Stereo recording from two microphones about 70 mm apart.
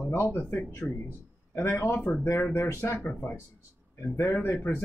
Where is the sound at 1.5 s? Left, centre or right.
Left.